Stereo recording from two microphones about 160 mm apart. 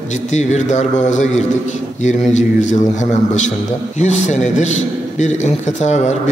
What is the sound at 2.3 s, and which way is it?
A man's voice, 45° left (ahead or behind).